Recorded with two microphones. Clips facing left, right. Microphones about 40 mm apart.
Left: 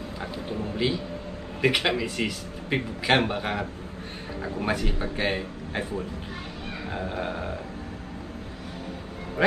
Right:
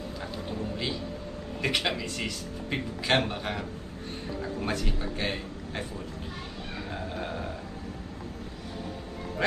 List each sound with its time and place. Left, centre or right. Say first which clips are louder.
0.2 s a man's voice: left 4 dB; centre